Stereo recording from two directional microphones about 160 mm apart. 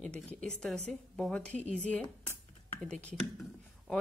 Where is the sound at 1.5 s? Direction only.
45° right (ahead or behind).